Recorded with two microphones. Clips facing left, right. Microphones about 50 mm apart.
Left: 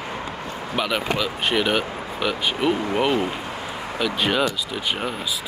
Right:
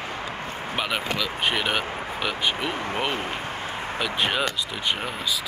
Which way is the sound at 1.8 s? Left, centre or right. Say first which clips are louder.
Even; right.